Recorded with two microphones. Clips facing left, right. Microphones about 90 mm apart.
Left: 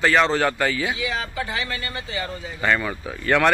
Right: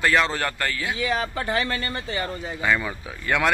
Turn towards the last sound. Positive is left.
turn(degrees=-5)  # may be behind; listen again after turning